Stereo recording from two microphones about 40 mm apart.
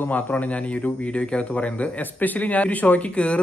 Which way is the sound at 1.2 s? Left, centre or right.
Left.